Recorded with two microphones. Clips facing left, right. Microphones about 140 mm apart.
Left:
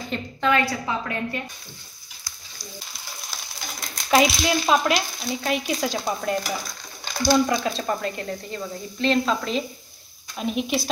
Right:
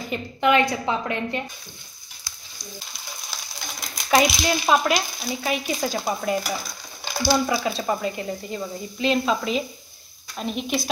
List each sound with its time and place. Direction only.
0.1 s a woman's voice: 20° right (ahead or behind)
3.9 s stir: centre (ahead or behind)